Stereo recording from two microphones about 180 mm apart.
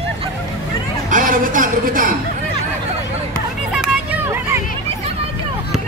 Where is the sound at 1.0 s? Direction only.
45° right (ahead or behind).